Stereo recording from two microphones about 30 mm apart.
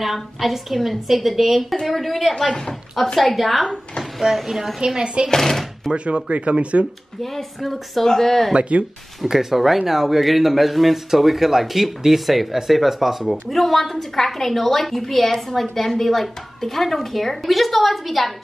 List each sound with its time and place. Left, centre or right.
0.0 s a woman's voice: centre
3.6 s speech: left
4.4 s a woman's voice: centre
4.7 s speech: right
5.3 s speech: centre
5.9 s speech: right
7.6 s a woman's voice: centre
8.5 s speech: right
9.3 s a woman's voice: centre
13.3 s a woman's voice: centre